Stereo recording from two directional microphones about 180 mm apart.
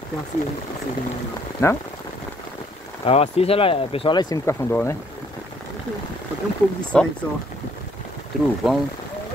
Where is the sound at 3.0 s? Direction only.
35° left (ahead or behind); by 5.0 s 15° left (ahead or behind).